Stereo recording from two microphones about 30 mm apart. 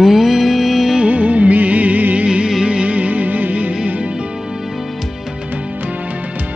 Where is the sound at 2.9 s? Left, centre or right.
Right.